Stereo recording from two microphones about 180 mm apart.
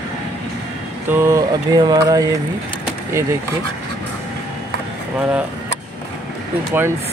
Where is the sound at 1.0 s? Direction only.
15° right (ahead or behind).